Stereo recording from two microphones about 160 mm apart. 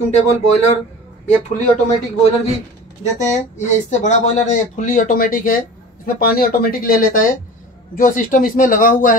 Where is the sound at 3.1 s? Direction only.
50° left (ahead or behind).